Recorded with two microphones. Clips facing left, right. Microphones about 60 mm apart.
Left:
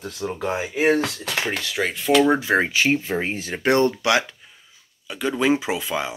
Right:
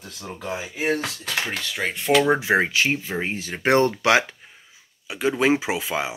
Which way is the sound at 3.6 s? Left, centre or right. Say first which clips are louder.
Even; right.